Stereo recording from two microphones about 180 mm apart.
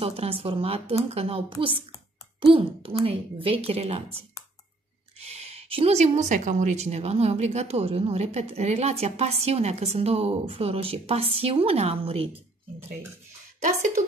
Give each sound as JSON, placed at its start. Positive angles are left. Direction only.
{"t": 0.0, "sound": "speech", "side_deg": -35}
{"t": 5.2, "sound": "speech", "side_deg": -35}